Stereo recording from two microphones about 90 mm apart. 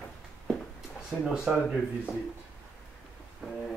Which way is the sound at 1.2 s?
5° right (ahead or behind).